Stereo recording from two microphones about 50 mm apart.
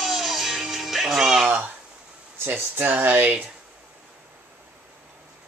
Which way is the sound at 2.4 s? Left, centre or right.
Right.